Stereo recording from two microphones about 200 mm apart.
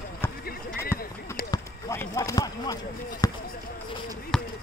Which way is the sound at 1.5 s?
15° left (ahead or behind).